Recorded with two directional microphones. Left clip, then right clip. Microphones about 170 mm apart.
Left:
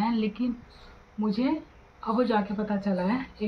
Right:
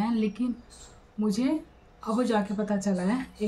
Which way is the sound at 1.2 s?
30° right (ahead or behind).